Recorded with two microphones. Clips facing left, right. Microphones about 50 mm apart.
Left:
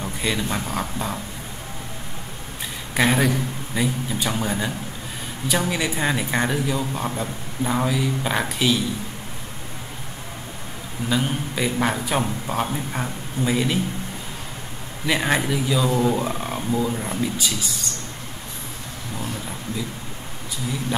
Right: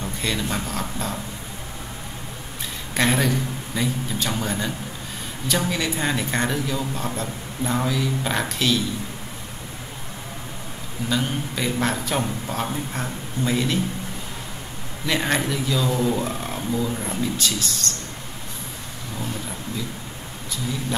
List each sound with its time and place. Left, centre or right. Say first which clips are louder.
0.0 s speech: left 1 dB; centre
2.9 s speech: left 2 dB; centre
11.1 s speech: left 1 dB; centre
15.0 s speech: left 1 dB; centre